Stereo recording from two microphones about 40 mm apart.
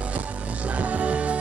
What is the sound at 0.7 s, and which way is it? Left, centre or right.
Music, right.